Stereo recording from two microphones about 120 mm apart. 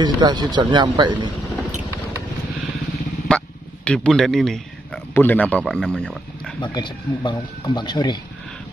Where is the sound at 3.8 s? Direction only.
5° left (ahead or behind).